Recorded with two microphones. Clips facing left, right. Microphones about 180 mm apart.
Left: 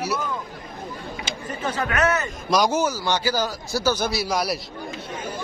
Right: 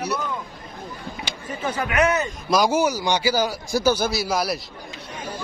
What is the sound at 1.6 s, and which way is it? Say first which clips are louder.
A man's voice: right 2 dB; 10° right (ahead or behind).